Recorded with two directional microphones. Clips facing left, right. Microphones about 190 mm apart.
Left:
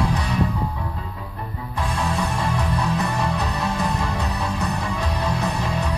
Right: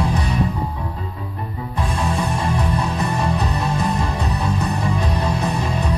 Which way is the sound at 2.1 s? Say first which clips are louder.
Right 3 dB; 20° right (ahead or behind).